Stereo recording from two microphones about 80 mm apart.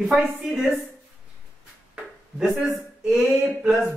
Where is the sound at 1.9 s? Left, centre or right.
Centre.